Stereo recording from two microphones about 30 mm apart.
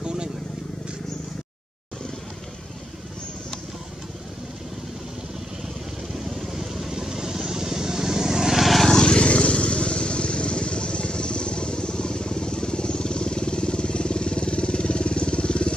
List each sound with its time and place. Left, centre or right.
0.0 s vehicle: right
6.1 s vehicle: centre
9.0 s vehicle: left